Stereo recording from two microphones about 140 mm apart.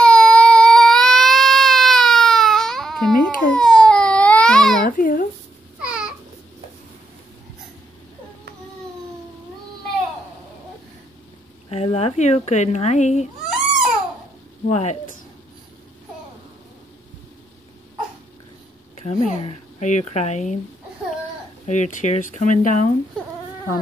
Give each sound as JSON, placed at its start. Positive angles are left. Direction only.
{"t": 0.0, "sound": "baby cry", "side_deg": 5}
{"t": 4.8, "sound": "a sound", "side_deg": 85}
{"t": 5.9, "sound": "babbling", "side_deg": -5}
{"t": 11.7, "sound": "speech", "side_deg": 45}
{"t": 14.7, "sound": "speech", "side_deg": 55}
{"t": 19.0, "sound": "speech", "side_deg": 60}
{"t": 21.6, "sound": "speech", "side_deg": 60}